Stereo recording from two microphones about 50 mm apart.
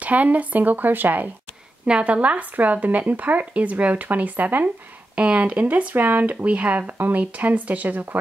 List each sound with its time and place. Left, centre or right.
0.0 s speech: right
1.9 s speech: right
5.1 s speech: right